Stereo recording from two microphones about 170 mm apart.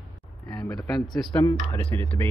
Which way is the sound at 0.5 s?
20° left (ahead or behind).